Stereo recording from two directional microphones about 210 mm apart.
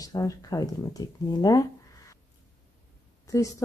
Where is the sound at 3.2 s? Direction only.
15° left (ahead or behind).